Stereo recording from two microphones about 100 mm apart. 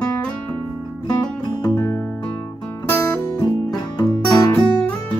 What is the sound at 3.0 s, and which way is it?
Music, 35° left (ahead or behind).